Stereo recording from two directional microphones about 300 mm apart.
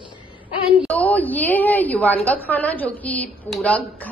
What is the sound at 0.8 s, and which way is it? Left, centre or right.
A woman's voice, centre.